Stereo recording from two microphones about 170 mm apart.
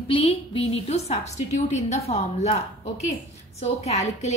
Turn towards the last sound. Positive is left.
turn(degrees=40)  # may be behind; listen again after turning